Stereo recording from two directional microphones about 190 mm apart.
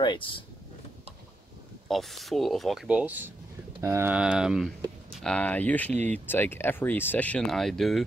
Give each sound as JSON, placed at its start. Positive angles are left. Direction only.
{"t": 0.0, "sound": "speech", "side_deg": 25}
{"t": 1.9, "sound": "speech", "side_deg": 0}